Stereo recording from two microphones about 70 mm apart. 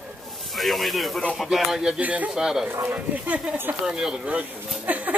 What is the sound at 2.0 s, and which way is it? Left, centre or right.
Speech, right.